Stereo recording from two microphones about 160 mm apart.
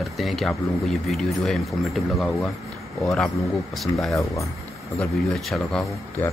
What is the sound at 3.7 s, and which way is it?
Speech, centre (ahead or behind).